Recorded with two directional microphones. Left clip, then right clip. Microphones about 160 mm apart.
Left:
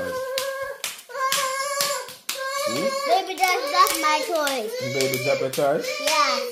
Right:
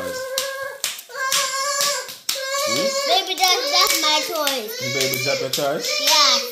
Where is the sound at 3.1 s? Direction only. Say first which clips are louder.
Right 2 dB; 15° left (ahead or behind).